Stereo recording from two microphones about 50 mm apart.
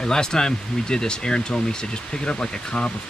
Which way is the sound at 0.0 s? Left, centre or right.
Centre.